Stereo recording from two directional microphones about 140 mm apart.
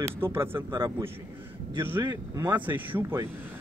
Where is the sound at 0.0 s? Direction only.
20° right (ahead or behind).